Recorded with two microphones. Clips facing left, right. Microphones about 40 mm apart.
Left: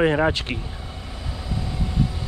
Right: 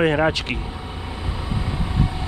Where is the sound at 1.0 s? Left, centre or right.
Right.